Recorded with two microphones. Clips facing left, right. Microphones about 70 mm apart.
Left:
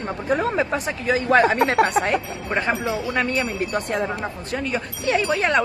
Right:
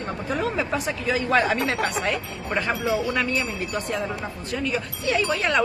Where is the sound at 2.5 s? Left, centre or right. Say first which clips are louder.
Left 1 dB; left.